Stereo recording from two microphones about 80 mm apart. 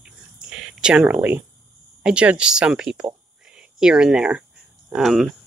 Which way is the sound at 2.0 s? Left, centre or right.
Centre.